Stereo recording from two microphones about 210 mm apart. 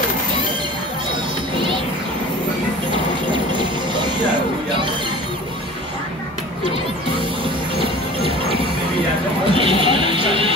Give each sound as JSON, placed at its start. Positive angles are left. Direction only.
{"t": 9.5, "sound": "music", "side_deg": -25}